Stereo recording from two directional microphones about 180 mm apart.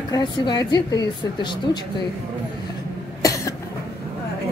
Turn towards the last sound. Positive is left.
turn(degrees=20)  # may be behind; listen again after turning